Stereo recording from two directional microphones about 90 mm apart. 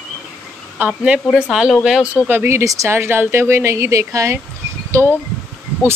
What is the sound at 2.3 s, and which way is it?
Speech, 25° right (ahead or behind).